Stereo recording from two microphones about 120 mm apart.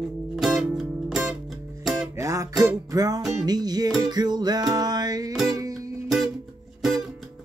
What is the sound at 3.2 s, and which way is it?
Music, centre (ahead or behind).